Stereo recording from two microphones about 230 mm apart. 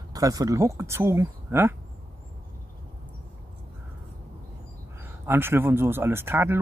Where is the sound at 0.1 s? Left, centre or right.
Centre.